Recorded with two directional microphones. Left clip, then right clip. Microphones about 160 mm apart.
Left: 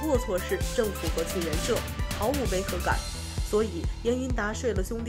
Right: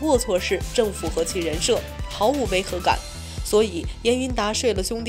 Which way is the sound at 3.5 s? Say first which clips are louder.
Right 8 dB; 5° right (ahead or behind).